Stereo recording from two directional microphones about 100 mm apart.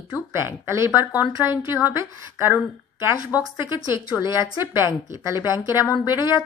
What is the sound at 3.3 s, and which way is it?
Speech, 35° left (ahead or behind).